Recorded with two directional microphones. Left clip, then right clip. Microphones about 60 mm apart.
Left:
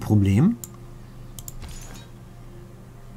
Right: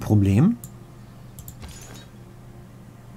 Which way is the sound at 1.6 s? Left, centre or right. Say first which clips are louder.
Even; centre.